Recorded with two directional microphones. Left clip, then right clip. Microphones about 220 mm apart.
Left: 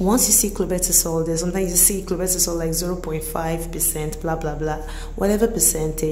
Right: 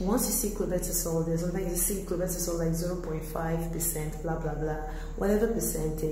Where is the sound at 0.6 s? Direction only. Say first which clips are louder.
Left 9 dB; 35° left (ahead or behind).